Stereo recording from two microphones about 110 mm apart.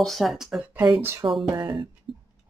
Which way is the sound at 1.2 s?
45° right (ahead or behind).